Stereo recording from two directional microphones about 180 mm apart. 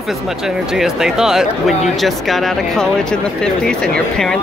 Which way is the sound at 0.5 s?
5° right (ahead or behind).